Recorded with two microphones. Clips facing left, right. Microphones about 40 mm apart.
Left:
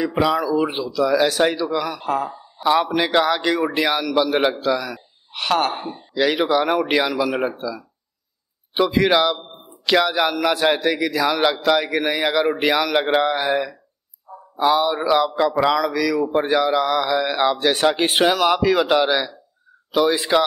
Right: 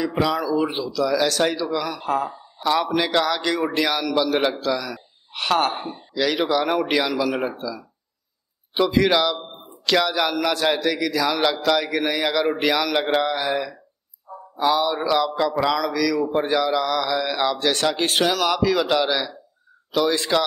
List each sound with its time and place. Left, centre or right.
0.1 s a man's voice: centre
2.6 s a man's voice: centre
5.3 s a woman's voice: centre
6.1 s a man's voice: centre
14.3 s a sound: right
14.6 s a man's voice: centre